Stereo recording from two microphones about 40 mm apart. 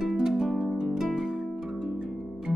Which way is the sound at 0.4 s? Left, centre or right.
Centre.